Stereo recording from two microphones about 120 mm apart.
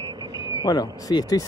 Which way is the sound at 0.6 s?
35° left (ahead or behind).